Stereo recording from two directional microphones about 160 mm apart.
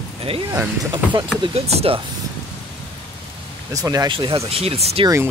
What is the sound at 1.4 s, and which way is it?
Speech, 40° right (ahead or behind).